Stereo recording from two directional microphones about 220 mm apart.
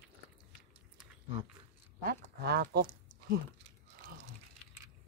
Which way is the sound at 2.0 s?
45° right (ahead or behind).